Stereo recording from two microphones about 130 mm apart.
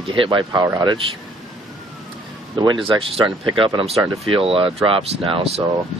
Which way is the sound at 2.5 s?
35° right (ahead or behind).